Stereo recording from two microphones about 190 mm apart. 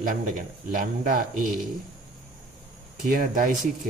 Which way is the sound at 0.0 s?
45° right (ahead or behind).